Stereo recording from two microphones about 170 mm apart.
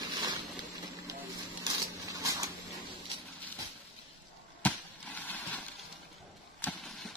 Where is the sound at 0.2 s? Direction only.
25° right (ahead or behind).